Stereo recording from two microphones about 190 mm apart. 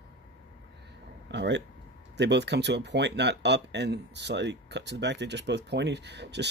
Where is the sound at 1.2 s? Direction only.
65° right (ahead or behind).